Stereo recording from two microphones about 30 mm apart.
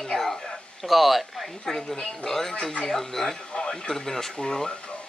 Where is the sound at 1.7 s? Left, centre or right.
Centre.